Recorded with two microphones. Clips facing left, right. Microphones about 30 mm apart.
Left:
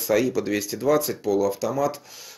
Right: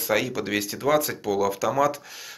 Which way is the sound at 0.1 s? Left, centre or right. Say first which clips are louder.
Left 3 dB; right.